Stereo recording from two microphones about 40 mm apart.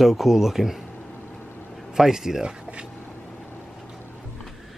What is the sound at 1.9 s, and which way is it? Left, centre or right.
Speech, centre.